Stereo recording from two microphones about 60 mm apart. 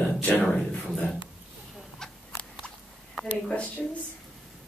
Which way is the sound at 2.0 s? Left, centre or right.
Centre.